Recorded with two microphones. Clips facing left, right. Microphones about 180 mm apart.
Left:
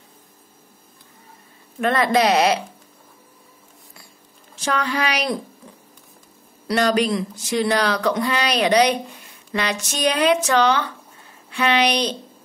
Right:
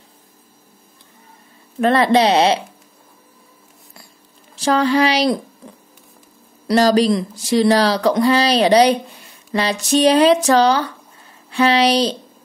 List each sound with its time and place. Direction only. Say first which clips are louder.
1.8 s a woman's voice: right 4 dB; 35° right (ahead or behind)
4.6 s speech: right 8 dB; 30° right (ahead or behind)
6.7 s speech: right 5 dB; 35° right (ahead or behind)